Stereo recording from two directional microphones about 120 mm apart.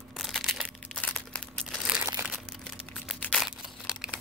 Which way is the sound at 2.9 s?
5° left (ahead or behind).